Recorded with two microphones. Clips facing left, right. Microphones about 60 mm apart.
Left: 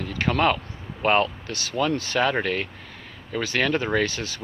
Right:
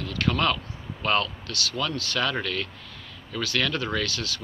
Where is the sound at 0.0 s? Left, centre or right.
Left.